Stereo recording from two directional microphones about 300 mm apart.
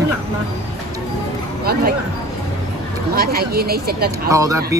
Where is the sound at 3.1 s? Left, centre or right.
Right.